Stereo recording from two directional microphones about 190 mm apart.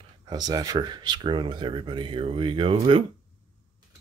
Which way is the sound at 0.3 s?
20° right (ahead or behind).